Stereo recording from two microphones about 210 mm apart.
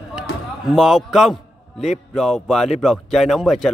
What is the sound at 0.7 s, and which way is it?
A man's voice, centre (ahead or behind).